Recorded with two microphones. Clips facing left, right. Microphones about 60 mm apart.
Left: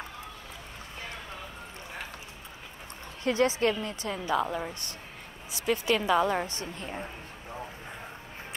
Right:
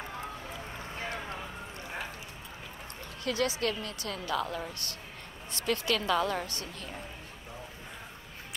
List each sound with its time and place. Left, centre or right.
3.3 s a woman's voice: left
5.9 s a woman's voice: centre